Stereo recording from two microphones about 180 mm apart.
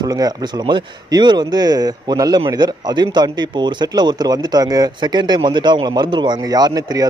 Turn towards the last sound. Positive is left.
turn(degrees=-20)  # may be behind; listen again after turning